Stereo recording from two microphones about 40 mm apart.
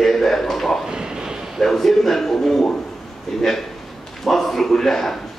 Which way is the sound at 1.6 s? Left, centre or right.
Centre.